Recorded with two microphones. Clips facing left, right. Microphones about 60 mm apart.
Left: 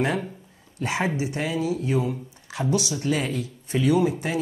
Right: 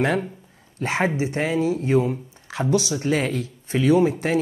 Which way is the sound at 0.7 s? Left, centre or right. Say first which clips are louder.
Right 3 dB; right.